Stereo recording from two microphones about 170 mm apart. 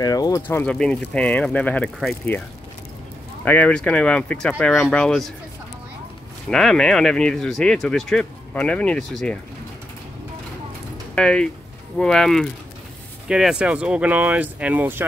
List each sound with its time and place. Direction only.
0.0 s speech: 20° left (ahead or behind); by 5.3 s 5° left (ahead or behind)
6.5 s speech: 5° left (ahead or behind)
11.1 s speech: 5° left (ahead or behind); by 15.0 s 10° right (ahead or behind)